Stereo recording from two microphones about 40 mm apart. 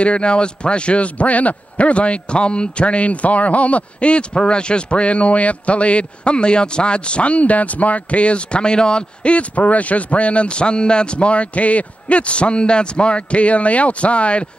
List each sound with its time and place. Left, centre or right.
0.0 s a man's voice: left